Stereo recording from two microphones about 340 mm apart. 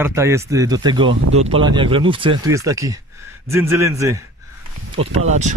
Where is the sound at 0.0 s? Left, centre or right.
Centre.